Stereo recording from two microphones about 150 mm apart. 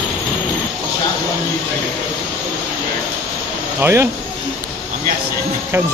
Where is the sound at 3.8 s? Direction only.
15° right (ahead or behind).